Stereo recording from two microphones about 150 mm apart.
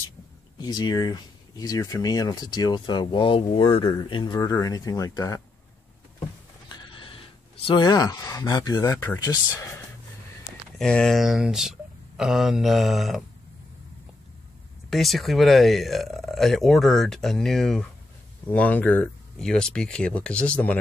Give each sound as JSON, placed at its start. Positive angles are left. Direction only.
{"t": 0.6, "sound": "speech", "side_deg": 30}
{"t": 7.6, "sound": "speech", "side_deg": 30}
{"t": 10.8, "sound": "speech", "side_deg": 5}
{"t": 14.9, "sound": "speech", "side_deg": 0}